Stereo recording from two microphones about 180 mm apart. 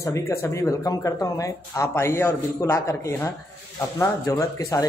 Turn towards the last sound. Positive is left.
turn(degrees=20)  # may be behind; listen again after turning